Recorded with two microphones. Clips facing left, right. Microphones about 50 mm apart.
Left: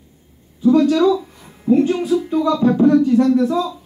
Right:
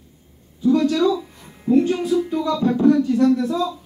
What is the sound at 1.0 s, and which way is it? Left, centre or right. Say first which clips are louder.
Speech: left 4 dB; centre.